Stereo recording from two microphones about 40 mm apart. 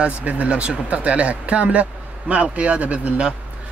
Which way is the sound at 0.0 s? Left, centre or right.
Right.